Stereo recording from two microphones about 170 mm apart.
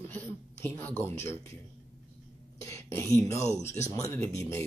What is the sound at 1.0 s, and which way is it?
Speech, 15° left (ahead or behind).